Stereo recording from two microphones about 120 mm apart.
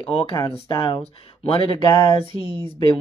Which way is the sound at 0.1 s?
50° left (ahead or behind).